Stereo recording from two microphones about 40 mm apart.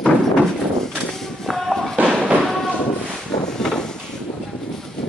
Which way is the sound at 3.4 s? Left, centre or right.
Centre.